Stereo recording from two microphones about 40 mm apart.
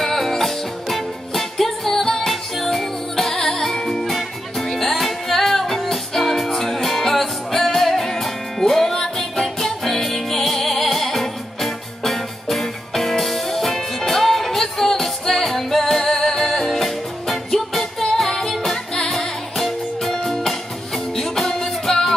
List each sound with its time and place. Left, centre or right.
0.0 s music: centre